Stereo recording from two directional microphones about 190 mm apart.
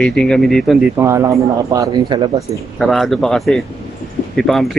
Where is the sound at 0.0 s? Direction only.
5° left (ahead or behind).